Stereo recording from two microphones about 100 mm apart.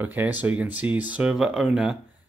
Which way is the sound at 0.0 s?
15° right (ahead or behind).